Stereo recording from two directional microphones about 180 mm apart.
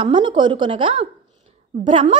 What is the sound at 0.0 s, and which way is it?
A woman's voice, 25° right (ahead or behind).